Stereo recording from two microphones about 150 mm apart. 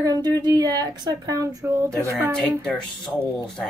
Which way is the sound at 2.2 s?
Centre (ahead or behind).